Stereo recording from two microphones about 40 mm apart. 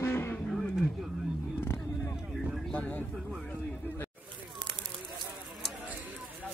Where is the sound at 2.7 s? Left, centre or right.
Left.